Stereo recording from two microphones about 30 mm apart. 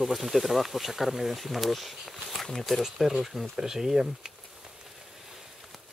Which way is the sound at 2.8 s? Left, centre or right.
Centre.